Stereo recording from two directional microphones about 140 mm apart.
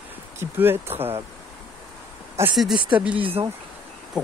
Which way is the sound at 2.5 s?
Centre (ahead or behind).